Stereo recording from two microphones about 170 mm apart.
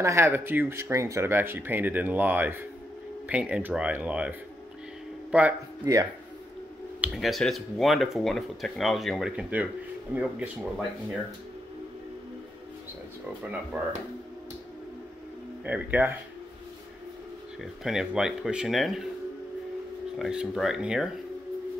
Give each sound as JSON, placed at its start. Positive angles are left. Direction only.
{"t": 0.0, "sound": "speech", "side_deg": -15}
{"t": 5.9, "sound": "speech", "side_deg": -20}
{"t": 7.0, "sound": "speech", "side_deg": 0}
{"t": 15.6, "sound": "speech", "side_deg": -10}
{"t": 17.8, "sound": "speech", "side_deg": -5}
{"t": 20.2, "sound": "speech", "side_deg": 0}